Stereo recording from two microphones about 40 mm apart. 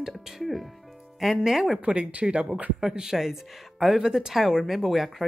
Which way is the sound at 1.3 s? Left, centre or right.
Centre.